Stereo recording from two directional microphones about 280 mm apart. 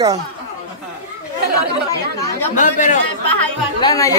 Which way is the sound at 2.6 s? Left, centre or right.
Left.